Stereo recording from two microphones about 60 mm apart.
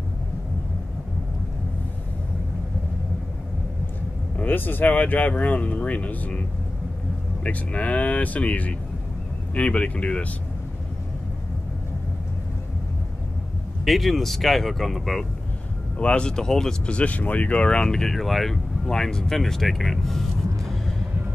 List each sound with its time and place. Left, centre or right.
4.4 s speech: left
7.4 s speech: left
13.8 s speech: centre
16.0 s speech: centre